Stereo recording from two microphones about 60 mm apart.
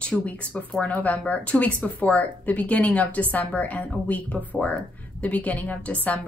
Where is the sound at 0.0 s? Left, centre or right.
Left.